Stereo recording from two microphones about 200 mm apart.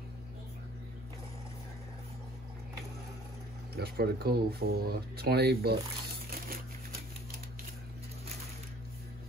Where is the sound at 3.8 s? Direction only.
50° right (ahead or behind).